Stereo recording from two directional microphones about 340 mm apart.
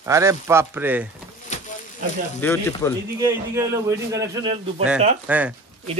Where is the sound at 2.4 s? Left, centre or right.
Centre.